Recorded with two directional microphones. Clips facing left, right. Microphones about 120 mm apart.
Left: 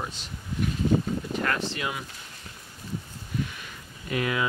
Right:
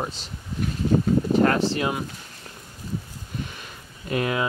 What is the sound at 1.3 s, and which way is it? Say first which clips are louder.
Speech: right 9 dB; 35° right (ahead or behind).